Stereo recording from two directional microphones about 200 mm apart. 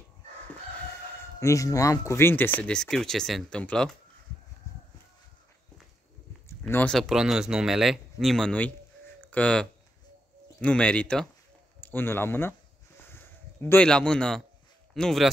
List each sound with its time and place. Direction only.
1.1 s speech: 15° left (ahead or behind)
4.7 s a sound: 15° left (ahead or behind)
6.6 s speech: 5° left (ahead or behind)